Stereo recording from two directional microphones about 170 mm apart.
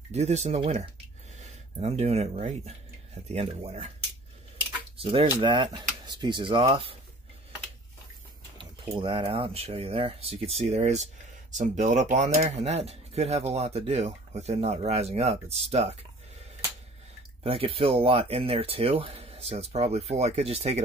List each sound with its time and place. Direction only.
0.1 s speech: 40° right (ahead or behind)
4.9 s speech: 30° right (ahead or behind)
8.5 s speech: 30° right (ahead or behind)
17.4 s speech: 35° right (ahead or behind)